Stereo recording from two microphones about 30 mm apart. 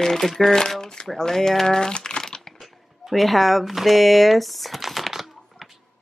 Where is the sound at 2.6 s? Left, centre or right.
Centre.